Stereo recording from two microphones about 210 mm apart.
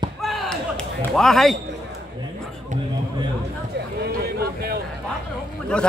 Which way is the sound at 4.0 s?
50° right (ahead or behind).